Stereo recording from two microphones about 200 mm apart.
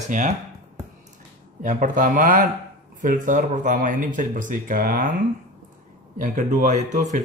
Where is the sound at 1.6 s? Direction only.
40° right (ahead or behind).